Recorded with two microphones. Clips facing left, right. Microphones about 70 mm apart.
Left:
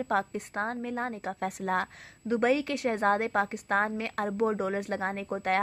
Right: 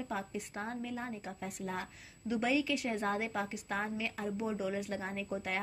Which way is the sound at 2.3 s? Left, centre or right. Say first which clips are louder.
Left 6 dB; left.